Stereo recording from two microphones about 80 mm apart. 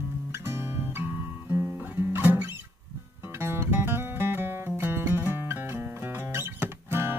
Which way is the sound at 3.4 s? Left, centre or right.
Right.